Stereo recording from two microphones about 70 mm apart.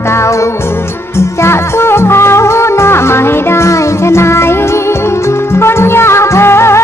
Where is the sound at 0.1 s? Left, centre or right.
Left.